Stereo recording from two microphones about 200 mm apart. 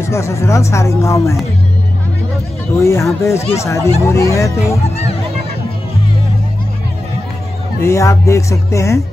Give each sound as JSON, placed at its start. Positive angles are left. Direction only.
{"t": 0.1, "sound": "speech", "side_deg": 15}
{"t": 2.7, "sound": "speech", "side_deg": 15}
{"t": 4.8, "sound": "speech", "side_deg": 30}
{"t": 7.8, "sound": "speech", "side_deg": 15}